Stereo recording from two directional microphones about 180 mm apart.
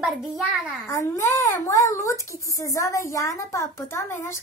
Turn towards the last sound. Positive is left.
turn(degrees=15)  # may be behind; listen again after turning